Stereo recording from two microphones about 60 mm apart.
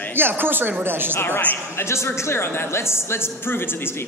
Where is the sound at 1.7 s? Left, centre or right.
Left.